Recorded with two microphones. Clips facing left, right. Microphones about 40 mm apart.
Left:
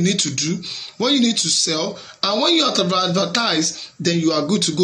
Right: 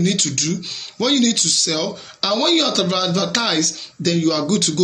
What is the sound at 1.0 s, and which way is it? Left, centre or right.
Speech, centre.